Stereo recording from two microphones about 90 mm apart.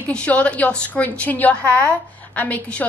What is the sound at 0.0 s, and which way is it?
A woman's voice, 15° left (ahead or behind).